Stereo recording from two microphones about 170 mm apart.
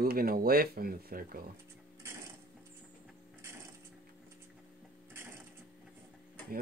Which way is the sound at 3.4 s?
15° right (ahead or behind).